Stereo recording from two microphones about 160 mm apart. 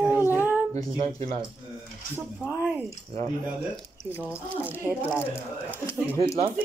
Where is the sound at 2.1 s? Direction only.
10° right (ahead or behind).